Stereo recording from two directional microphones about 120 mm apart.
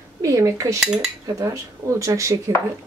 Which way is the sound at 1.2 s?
25° right (ahead or behind).